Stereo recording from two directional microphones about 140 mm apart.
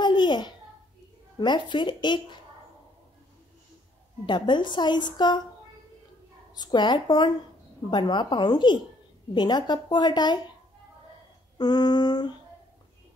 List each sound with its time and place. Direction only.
0.0 s babbling: 30° left (ahead or behind)
1.4 s a woman's voice: 30° left (ahead or behind)
4.3 s a woman's voice: 35° left (ahead or behind)
6.5 s a woman's voice: 30° left (ahead or behind)
11.5 s a sound: 30° left (ahead or behind)